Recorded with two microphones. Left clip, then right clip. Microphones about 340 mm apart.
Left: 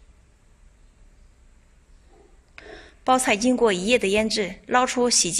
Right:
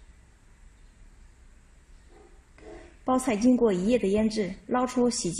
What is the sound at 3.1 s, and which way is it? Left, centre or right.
Speech, left.